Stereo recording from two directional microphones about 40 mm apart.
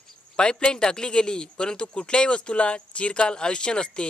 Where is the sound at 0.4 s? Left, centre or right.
Left.